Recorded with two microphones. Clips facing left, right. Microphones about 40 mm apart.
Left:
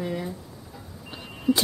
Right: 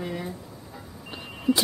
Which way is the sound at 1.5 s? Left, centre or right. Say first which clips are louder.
Even; centre.